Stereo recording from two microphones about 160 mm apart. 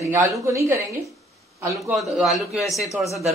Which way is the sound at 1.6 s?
5° right (ahead or behind).